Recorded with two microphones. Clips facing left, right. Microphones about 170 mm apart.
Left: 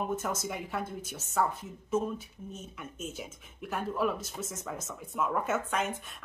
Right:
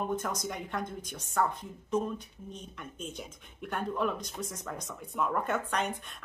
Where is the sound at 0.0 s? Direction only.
5° left (ahead or behind).